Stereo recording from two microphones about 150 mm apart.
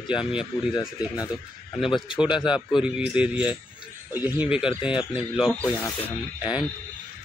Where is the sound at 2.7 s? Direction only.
5° right (ahead or behind).